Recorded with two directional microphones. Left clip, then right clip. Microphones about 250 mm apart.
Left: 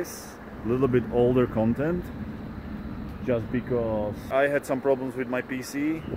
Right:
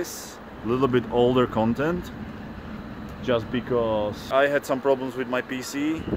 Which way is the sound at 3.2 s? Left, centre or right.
Centre.